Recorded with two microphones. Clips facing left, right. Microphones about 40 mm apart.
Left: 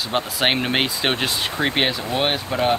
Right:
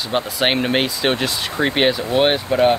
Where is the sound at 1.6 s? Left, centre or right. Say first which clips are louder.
Right 5 dB; centre.